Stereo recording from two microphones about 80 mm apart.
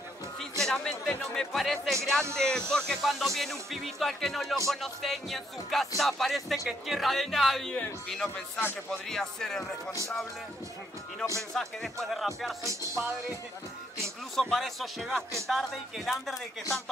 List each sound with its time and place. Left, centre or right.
0.4 s speech: centre
8.5 s speech: left
9.1 s speech: centre
11.5 s speech: centre
12.6 s music: right
14.3 s speech: centre